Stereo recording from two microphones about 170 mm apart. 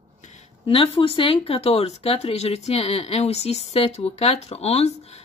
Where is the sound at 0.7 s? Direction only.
30° left (ahead or behind).